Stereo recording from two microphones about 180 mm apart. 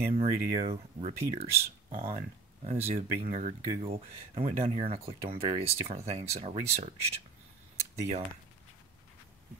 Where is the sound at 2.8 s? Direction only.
35° right (ahead or behind).